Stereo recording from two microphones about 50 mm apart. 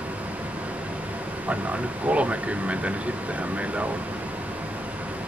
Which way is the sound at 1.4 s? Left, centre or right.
Right.